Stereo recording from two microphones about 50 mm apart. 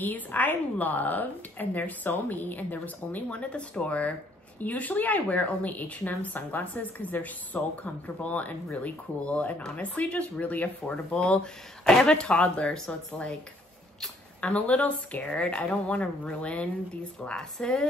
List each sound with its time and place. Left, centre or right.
0.0 s a woman's voice: left
11.8 s speech: centre
12.1 s a woman's voice: centre
14.4 s a woman's voice: left